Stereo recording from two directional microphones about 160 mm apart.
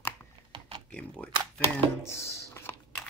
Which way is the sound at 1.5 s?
10° left (ahead or behind).